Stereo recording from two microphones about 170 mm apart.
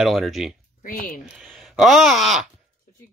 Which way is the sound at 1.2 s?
Centre (ahead or behind).